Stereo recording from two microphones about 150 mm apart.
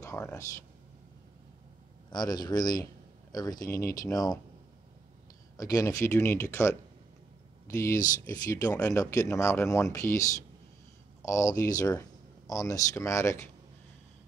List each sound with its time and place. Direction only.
0.0 s a sound: 20° left (ahead or behind)
2.0 s a man's voice: 30° left (ahead or behind)
5.6 s speech: 25° left (ahead or behind)
11.2 s speech: 20° left (ahead or behind)